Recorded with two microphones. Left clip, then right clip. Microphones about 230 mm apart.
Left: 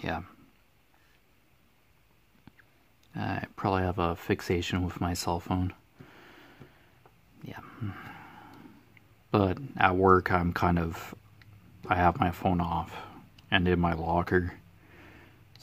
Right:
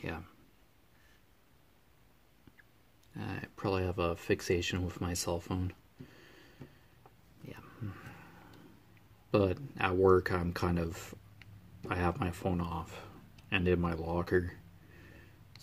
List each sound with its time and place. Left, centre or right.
0.0 s speech: left
3.2 s speech: left
7.4 s a sound: left
9.3 s speech: left